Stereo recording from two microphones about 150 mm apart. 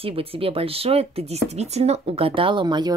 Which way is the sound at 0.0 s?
40° right (ahead or behind).